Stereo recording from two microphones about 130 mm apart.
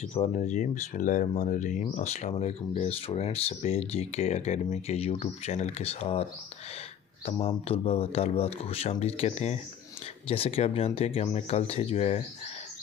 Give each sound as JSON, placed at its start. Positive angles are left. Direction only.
{"t": 0.3, "sound": "speech", "side_deg": 70}
{"t": 7.2, "sound": "speech", "side_deg": 50}